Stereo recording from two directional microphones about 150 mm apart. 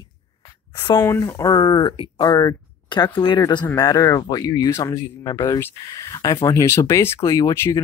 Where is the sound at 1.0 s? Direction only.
15° left (ahead or behind).